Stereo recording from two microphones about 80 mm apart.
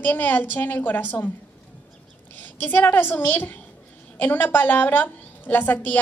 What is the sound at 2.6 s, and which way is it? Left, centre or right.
A woman's voice, left.